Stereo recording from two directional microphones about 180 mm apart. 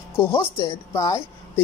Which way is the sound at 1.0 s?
15° left (ahead or behind).